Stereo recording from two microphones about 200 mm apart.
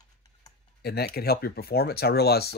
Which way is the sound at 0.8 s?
55° left (ahead or behind).